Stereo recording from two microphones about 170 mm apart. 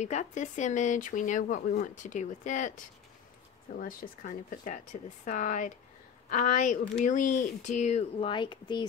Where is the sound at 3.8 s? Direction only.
55° left (ahead or behind).